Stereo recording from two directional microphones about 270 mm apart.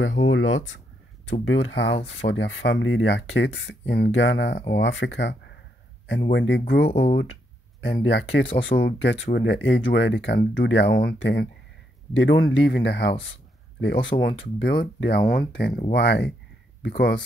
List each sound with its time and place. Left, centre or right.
0.3 s speech: left